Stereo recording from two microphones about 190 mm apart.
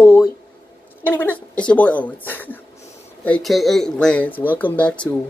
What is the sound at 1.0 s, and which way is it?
Speech, 10° left (ahead or behind).